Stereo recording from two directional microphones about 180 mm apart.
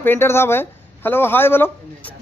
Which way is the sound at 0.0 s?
10° left (ahead or behind).